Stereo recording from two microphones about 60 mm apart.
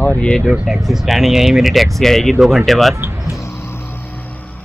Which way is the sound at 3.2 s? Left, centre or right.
Left.